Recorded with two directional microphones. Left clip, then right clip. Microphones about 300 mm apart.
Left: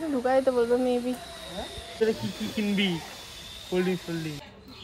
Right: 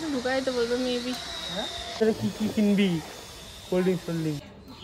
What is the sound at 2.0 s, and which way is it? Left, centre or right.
Speech, right.